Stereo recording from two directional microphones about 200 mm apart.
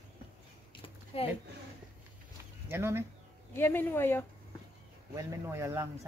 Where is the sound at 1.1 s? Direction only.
30° left (ahead or behind).